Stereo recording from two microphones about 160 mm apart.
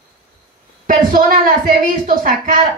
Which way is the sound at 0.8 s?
60° right (ahead or behind).